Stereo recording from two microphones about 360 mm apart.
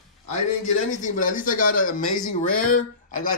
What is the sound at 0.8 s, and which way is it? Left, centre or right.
Speech, left.